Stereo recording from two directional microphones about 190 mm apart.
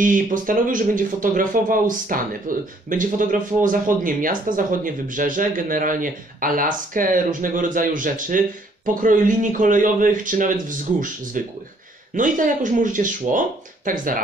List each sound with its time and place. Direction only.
0.0 s speech: 45° right (ahead or behind)